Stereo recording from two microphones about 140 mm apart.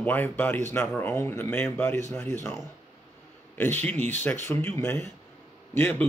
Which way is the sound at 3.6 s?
15° left (ahead or behind).